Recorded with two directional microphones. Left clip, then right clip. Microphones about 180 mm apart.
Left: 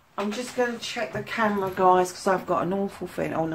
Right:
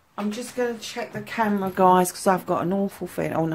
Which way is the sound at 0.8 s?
50° right (ahead or behind).